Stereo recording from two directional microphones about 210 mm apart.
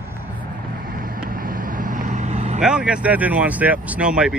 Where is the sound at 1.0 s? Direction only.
45° right (ahead or behind).